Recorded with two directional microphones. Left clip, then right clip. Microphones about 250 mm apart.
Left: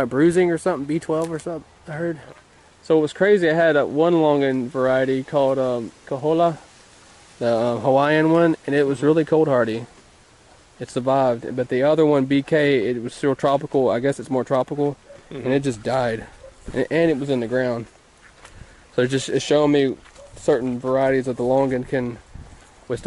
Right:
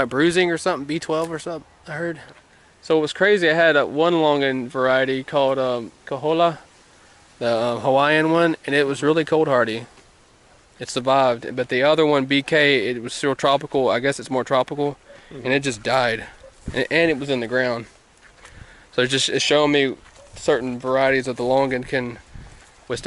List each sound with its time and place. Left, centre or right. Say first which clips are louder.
0.0 s speech: left 1 dB; centre
18.9 s speech: right 1 dB; centre